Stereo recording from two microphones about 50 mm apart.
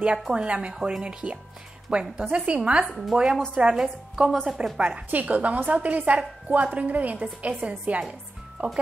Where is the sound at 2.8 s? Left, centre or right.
Centre.